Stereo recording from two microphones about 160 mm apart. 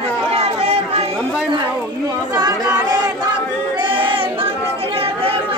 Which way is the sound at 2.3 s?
25° right (ahead or behind).